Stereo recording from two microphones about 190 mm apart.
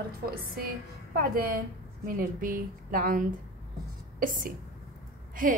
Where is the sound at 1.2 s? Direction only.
50° right (ahead or behind).